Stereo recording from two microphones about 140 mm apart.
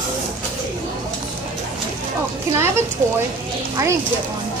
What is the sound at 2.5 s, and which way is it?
Speech, 20° right (ahead or behind).